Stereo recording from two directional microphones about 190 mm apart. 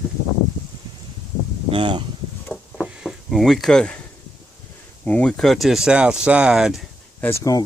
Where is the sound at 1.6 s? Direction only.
25° right (ahead or behind).